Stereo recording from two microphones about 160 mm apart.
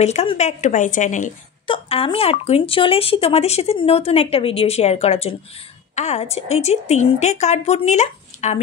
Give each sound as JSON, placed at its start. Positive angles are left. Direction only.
{"t": 0.0, "sound": "a woman's voice", "side_deg": 45}
{"t": 1.7, "sound": "a woman's voice", "side_deg": 35}